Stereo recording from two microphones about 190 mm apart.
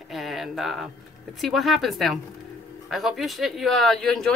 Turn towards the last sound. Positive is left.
turn(degrees=5)  # may be behind; listen again after turning